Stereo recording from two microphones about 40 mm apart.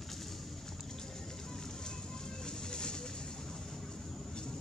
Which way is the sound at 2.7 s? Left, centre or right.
Left.